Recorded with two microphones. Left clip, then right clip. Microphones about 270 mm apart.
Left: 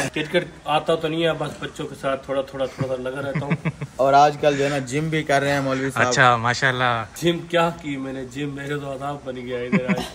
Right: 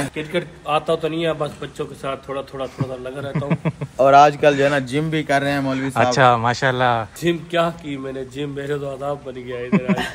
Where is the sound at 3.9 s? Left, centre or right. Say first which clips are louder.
Right 4 dB; right.